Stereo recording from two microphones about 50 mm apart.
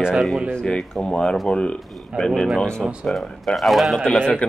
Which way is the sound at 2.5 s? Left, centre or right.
Centre.